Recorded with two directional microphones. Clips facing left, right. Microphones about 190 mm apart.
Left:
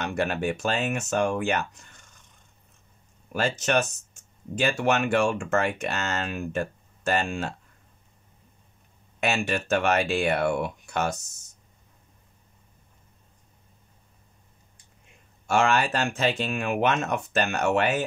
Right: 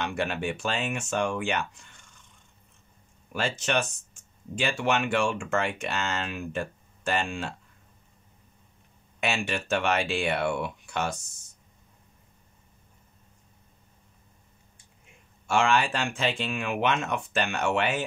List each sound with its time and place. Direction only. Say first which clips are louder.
0.0 s speech: left 3 dB; 45° left (ahead or behind)
3.3 s speech: left 3 dB; 45° left (ahead or behind)
9.2 s speech: left 3 dB; 45° left (ahead or behind)
15.4 s speech: left 1 dB; 40° left (ahead or behind)